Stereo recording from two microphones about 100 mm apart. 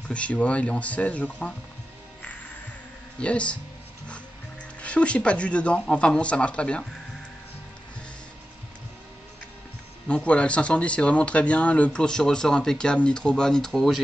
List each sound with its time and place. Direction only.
0.1 s speech: 10° left (ahead or behind)
3.2 s speech: 10° left (ahead or behind)
4.8 s speech: 10° left (ahead or behind)
10.0 s speech: 10° left (ahead or behind)